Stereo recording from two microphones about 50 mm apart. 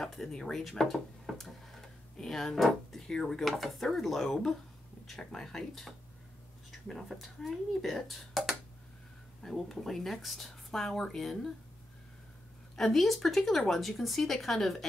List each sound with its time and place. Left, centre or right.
0.0 s speech: centre
12.7 s speech: centre